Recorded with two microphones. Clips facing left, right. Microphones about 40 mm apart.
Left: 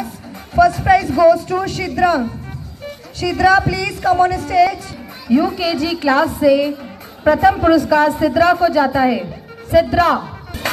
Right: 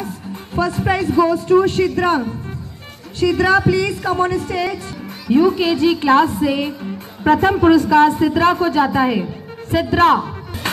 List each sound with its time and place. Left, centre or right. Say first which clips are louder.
0.6 s a man's voice: left 6 dB; right
3.3 s a woman's voice: left 1 dB; right
8.8 s a woman's voice: left 1 dB; right
9.7 s a man's voice: left 1 dB; right